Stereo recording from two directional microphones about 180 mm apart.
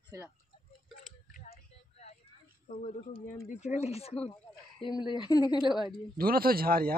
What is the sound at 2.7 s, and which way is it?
Speech, 40° left (ahead or behind).